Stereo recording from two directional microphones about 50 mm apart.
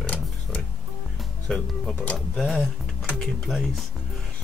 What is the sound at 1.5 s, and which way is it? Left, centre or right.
Speech, centre.